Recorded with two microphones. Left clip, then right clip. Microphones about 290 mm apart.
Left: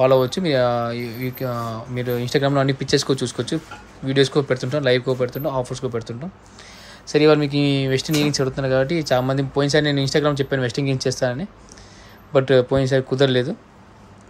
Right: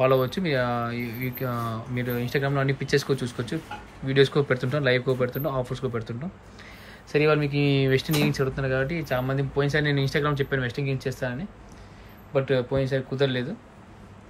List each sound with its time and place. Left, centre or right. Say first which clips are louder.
0.0 s a man's voice: left 6 dB; centre